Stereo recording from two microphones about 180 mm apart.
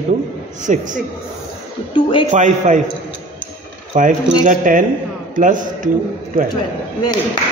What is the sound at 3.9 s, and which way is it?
Speech, 45° right (ahead or behind).